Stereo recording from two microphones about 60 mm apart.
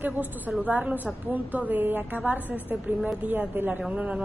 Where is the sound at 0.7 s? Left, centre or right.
Right.